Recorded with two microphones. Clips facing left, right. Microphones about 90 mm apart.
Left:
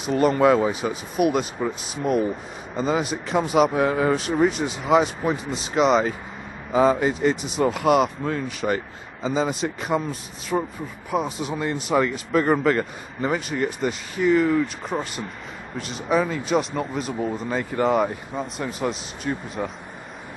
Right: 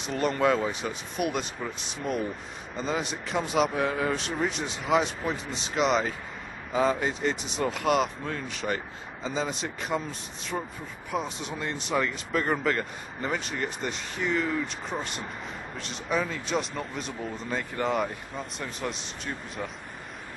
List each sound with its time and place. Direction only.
0.0 s speech: 5° left (ahead or behind)
10.5 s speech: 30° left (ahead or behind)
11.1 s speech: 5° left (ahead or behind)